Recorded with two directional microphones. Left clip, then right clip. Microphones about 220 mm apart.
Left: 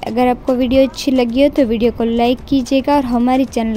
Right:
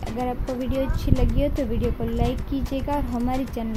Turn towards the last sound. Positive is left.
turn(degrees=40)  # may be behind; listen again after turning